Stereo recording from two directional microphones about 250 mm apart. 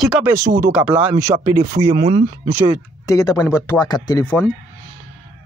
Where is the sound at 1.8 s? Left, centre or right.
Right.